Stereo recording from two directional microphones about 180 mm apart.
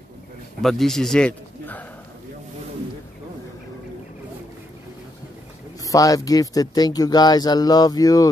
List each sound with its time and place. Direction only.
0.6 s a man's voice: centre (ahead or behind)
5.9 s speech: 20° left (ahead or behind)